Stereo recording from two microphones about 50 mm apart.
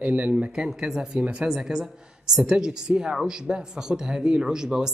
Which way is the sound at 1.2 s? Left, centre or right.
Right.